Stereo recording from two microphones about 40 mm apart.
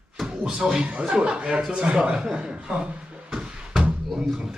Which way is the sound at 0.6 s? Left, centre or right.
Right.